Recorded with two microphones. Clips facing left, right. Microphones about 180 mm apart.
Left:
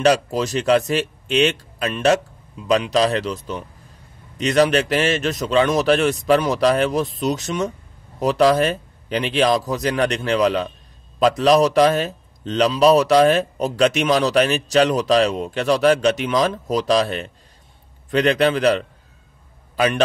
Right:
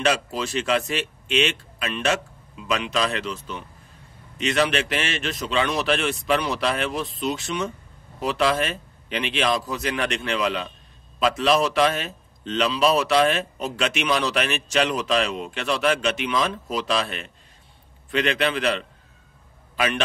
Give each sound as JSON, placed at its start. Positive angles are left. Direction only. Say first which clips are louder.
{"t": 0.0, "sound": "a man's voice", "louder": "left 6 dB", "side_deg": 40}